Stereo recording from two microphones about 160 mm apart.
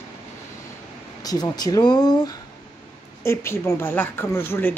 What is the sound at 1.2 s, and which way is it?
Speech, 25° left (ahead or behind).